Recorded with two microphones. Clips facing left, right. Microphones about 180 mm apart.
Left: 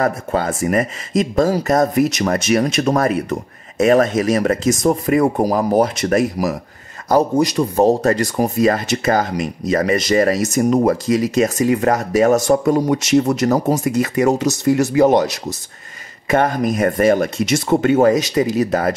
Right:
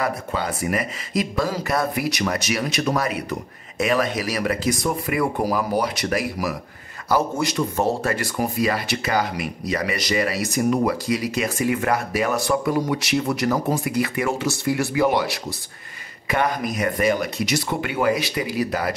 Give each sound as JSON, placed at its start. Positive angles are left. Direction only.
{"t": 0.0, "sound": "speech", "side_deg": 45}
{"t": 16.3, "sound": "speech", "side_deg": 45}